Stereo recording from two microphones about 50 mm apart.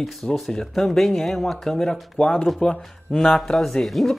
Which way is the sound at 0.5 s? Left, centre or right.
Centre.